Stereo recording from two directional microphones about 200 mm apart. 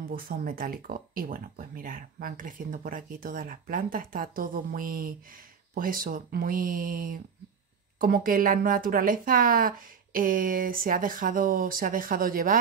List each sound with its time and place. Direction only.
0.0 s speech: 45° right (ahead or behind)